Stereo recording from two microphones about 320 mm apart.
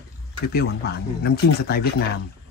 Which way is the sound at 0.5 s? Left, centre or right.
Left.